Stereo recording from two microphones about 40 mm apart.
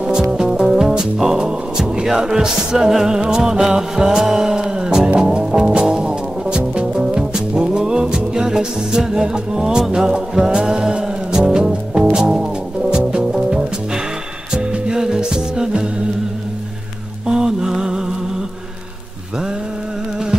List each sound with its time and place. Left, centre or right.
0.0 s music: right
14.5 s music: centre
17.3 s music: centre